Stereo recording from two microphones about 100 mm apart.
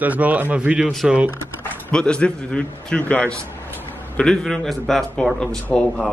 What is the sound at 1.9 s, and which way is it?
A man's voice, 10° left (ahead or behind).